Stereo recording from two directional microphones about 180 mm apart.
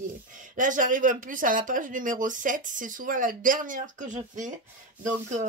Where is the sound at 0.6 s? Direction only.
45° right (ahead or behind).